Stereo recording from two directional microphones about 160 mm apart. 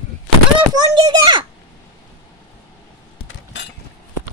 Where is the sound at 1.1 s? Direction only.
25° right (ahead or behind).